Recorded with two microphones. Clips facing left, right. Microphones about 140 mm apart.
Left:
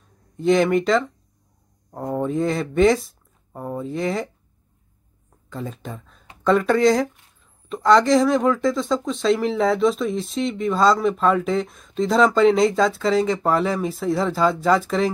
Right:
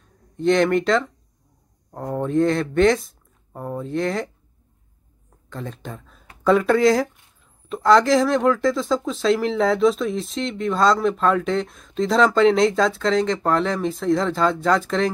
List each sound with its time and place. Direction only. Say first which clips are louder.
0.4 s speech: even; centre (ahead or behind)
5.5 s speech: left 1 dB; centre (ahead or behind)